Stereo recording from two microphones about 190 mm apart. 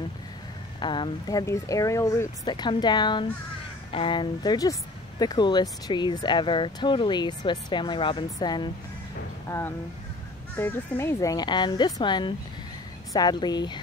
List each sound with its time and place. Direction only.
0.7 s speech: 25° left (ahead or behind)
9.5 s speech: 10° left (ahead or behind)